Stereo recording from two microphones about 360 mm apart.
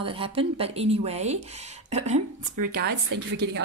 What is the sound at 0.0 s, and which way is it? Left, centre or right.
Speech, centre.